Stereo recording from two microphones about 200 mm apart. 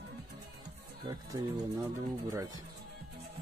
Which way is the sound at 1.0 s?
20° right (ahead or behind).